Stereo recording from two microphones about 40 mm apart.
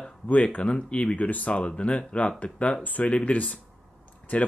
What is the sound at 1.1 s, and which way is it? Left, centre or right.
Speech, left.